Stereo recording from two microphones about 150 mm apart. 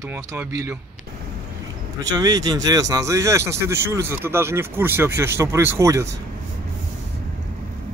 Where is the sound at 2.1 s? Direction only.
25° right (ahead or behind).